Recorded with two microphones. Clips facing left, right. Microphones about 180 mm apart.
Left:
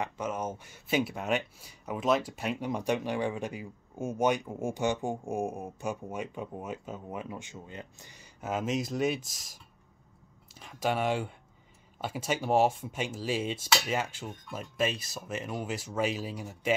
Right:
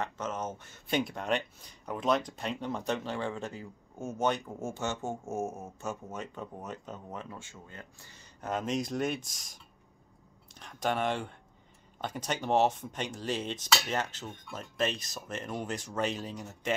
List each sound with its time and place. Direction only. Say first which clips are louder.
0.0 s speech: left 2 dB; 10° left (ahead or behind)